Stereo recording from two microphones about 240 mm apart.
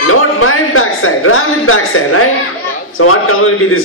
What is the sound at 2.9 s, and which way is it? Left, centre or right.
Speech, left.